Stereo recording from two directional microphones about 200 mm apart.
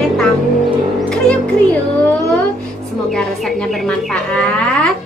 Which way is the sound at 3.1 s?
Centre (ahead or behind).